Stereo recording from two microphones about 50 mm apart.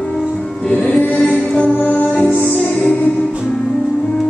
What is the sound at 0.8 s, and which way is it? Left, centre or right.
Music, left.